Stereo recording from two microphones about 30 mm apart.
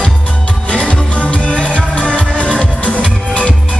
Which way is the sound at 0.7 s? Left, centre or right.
Left.